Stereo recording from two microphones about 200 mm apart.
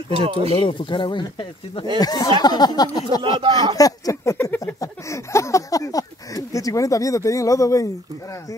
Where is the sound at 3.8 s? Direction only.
15° left (ahead or behind).